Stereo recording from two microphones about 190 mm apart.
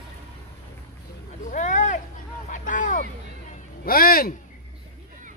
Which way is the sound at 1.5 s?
40° left (ahead or behind).